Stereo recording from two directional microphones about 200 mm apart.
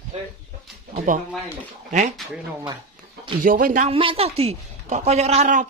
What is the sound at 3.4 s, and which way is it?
Speech, 40° right (ahead or behind).